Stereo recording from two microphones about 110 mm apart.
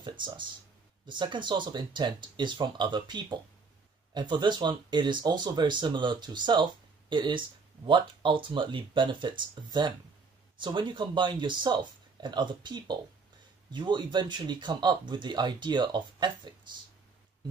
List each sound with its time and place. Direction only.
0.0 s speech: 45° right (ahead or behind)